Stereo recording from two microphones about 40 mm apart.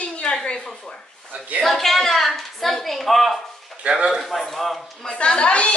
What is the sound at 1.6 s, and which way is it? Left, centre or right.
A woman's voice, centre.